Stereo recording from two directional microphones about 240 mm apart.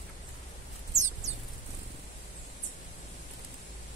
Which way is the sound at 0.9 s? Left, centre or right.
Right.